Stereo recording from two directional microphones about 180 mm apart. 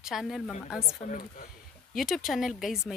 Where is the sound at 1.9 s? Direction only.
Centre (ahead or behind).